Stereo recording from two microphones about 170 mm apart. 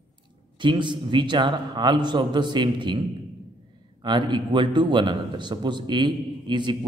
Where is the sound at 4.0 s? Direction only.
25° right (ahead or behind).